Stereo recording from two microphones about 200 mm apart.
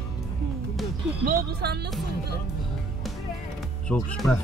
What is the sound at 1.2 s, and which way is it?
Speech, 50° right (ahead or behind).